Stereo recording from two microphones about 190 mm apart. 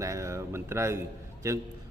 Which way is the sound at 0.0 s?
15° right (ahead or behind).